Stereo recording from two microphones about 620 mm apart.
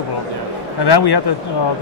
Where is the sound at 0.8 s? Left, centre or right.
Left.